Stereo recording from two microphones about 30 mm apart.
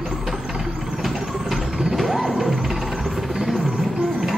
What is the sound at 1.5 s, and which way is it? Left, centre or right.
Music, right.